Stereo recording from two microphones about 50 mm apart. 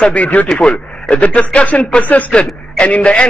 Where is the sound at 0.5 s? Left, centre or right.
Centre.